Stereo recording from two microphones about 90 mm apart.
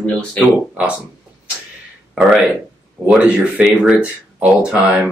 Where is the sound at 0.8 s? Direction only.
15° right (ahead or behind).